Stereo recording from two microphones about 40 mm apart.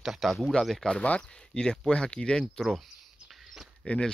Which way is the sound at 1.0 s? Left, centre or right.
Left.